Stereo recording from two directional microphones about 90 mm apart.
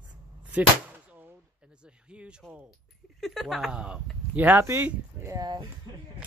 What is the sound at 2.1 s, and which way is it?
Speech, 10° right (ahead or behind).